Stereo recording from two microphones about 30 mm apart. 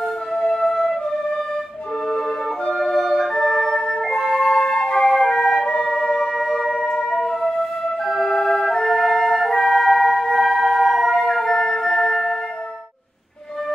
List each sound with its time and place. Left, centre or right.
0.0 s flute: centre
2.2 s music: left
2.8 s flute: centre
6.3 s music: centre
7.0 s flute: centre
9.0 s music: centre
9.6 s music: centre